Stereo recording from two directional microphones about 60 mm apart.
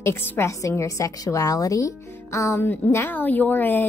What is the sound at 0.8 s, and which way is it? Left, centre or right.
Speech, left.